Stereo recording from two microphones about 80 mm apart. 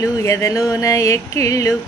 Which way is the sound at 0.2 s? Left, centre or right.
Left.